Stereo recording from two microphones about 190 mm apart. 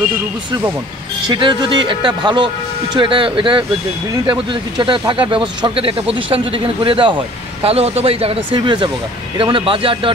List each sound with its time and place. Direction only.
1.3 s speech: 25° right (ahead or behind)